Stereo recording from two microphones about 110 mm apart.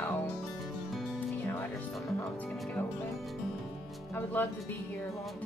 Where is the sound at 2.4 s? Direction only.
5° left (ahead or behind).